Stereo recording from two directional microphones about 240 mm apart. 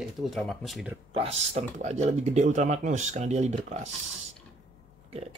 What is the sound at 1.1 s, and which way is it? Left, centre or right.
Speech, right.